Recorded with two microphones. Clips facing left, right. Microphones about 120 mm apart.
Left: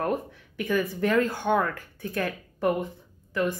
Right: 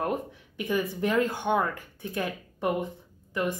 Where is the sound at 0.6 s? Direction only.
20° right (ahead or behind).